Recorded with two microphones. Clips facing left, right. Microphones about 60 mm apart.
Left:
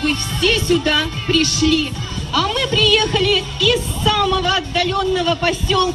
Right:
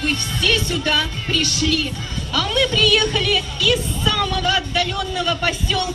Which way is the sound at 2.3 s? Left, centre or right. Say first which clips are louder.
Left 1 dB; left.